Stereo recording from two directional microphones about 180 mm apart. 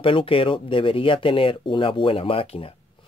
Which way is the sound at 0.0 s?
30° left (ahead or behind).